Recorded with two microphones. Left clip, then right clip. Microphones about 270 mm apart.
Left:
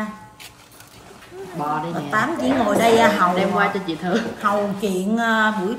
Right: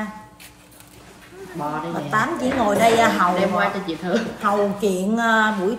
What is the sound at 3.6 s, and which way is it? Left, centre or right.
Speech, centre.